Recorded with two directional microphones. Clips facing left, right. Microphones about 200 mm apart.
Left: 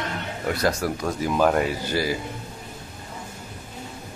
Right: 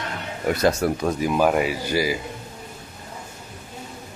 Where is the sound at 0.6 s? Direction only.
25° right (ahead or behind).